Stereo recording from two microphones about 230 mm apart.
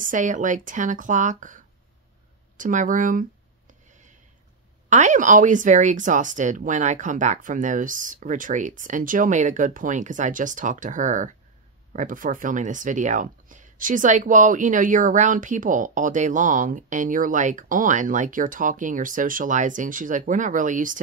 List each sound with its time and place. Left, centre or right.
0.0 s speech: right
4.8 s speech: right